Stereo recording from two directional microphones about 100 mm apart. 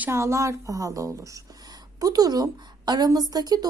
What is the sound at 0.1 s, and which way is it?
A woman's voice, 30° right (ahead or behind).